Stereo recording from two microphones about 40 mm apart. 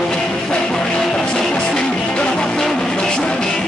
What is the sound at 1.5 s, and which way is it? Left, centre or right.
Music, left.